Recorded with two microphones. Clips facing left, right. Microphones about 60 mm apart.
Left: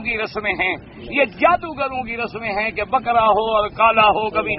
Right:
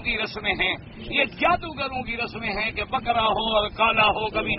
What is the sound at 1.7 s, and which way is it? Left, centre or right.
Speech, left.